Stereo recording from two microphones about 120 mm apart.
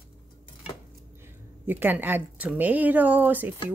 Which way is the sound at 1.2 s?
20° right (ahead or behind).